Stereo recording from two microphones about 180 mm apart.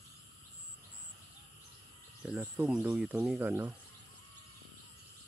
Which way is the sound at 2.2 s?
10° right (ahead or behind).